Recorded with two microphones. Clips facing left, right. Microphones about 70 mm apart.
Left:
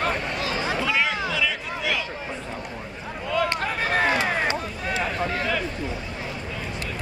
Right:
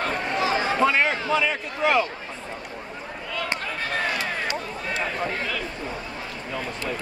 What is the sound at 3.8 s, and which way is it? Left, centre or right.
Run, left.